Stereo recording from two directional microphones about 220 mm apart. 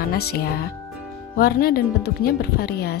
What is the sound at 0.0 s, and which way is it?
Speech, 45° left (ahead or behind).